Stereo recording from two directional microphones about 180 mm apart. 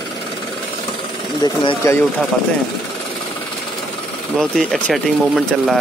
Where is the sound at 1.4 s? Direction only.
20° left (ahead or behind).